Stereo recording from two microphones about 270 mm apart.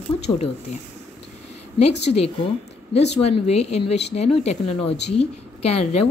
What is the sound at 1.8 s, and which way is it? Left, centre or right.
Speech, left.